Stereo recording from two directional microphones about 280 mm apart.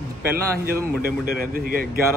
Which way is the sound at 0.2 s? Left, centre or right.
Right.